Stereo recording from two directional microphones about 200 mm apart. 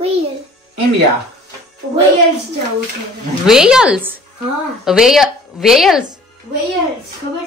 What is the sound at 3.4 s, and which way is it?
A woman's voice, 5° right (ahead or behind).